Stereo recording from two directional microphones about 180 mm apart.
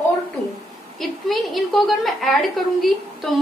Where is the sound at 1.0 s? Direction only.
Centre (ahead or behind).